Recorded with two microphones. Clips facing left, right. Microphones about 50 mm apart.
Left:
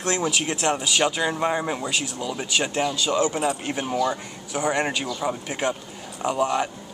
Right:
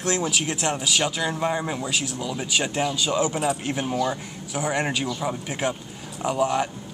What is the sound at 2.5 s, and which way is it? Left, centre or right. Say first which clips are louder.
Speech: left 1 dB; centre.